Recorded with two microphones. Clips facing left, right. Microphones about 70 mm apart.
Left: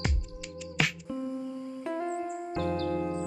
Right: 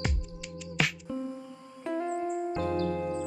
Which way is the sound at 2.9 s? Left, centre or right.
Centre.